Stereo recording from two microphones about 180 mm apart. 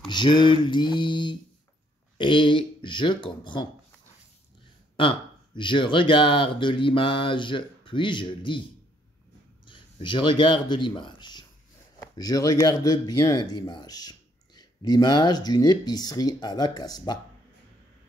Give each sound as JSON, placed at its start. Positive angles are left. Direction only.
{"t": 0.1, "sound": "speech", "side_deg": 25}
{"t": 4.9, "sound": "speech", "side_deg": 25}
{"t": 9.7, "sound": "a man's voice", "side_deg": 25}